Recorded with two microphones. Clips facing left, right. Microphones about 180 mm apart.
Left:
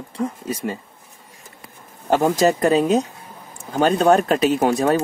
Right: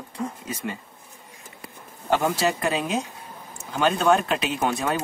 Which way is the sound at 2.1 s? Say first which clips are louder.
Left 6 dB; 40° left (ahead or behind).